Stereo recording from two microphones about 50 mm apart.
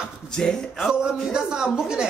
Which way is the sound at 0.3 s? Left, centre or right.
Centre.